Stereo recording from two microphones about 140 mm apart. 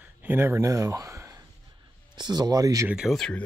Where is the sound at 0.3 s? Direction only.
15° right (ahead or behind).